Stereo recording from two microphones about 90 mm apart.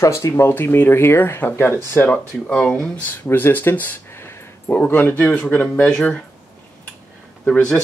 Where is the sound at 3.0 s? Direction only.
20° left (ahead or behind).